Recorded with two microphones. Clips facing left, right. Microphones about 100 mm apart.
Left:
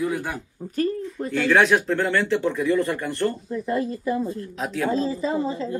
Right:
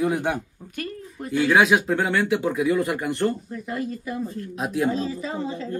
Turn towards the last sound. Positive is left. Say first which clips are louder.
# left 4 dB
turn(degrees=30)  # may be behind; listen again after turning